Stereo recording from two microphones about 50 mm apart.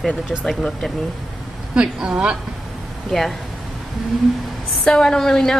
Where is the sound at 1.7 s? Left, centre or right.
Centre.